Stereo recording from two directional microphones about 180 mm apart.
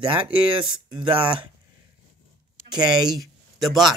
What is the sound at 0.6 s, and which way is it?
Speech, 25° right (ahead or behind).